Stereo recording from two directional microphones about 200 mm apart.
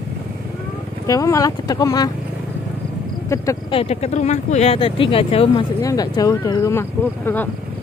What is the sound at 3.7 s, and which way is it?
Speech, 30° left (ahead or behind).